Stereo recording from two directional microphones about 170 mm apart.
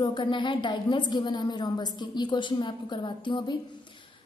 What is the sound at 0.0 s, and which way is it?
A woman's voice, 30° left (ahead or behind).